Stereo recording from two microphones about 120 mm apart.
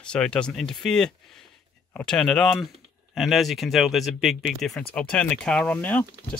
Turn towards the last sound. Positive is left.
turn(degrees=10)  # may be behind; listen again after turning